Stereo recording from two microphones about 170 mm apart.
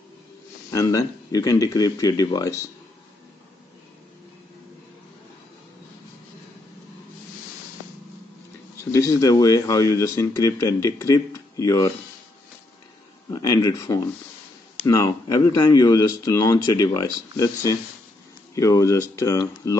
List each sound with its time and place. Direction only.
0.7 s speech: 20° left (ahead or behind)
8.9 s speech: 20° left (ahead or behind)
13.3 s speech: 20° left (ahead or behind)